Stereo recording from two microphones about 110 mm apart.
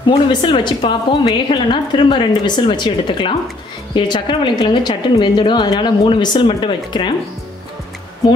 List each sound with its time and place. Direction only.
0.0 s a woman's voice: 45° left (ahead or behind)